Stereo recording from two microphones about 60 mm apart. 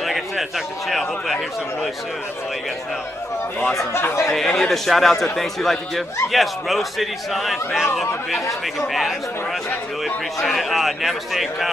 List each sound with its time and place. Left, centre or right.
0.0 s a man's voice: centre
3.9 s speech: left
4.3 s a man's voice: centre